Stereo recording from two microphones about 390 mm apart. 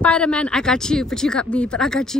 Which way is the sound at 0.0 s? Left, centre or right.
Centre.